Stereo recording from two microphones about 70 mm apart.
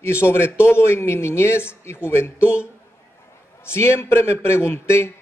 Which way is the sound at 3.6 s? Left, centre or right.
Left.